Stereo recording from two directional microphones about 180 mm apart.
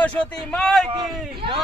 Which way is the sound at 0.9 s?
25° right (ahead or behind).